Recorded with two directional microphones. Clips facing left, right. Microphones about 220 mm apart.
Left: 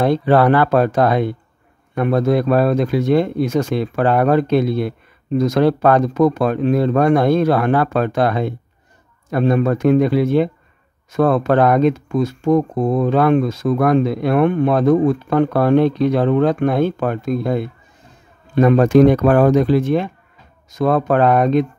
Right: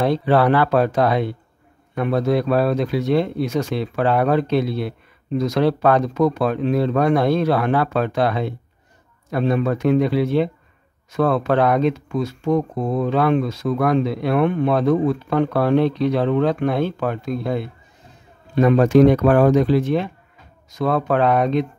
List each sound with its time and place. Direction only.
0.0 s speech: 50° left (ahead or behind)